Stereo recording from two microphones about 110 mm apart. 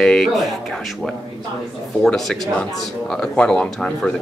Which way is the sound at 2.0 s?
5° left (ahead or behind).